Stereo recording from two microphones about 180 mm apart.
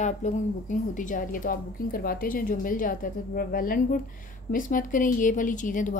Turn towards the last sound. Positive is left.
turn(degrees=45)  # may be behind; listen again after turning